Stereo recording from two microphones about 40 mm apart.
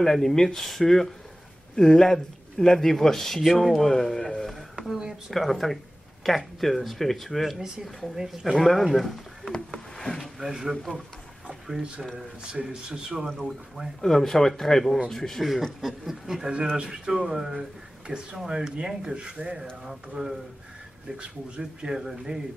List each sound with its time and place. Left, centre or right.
0.0 s speech: centre
8.2 s speech: centre
9.7 s a sound: centre
10.4 s speech: centre
11.4 s a sound: centre
12.6 s speech: centre
14.0 s speech: centre
15.8 s speech: centre
18.0 s speech: centre
19.6 s speech: centre
21.2 s speech: right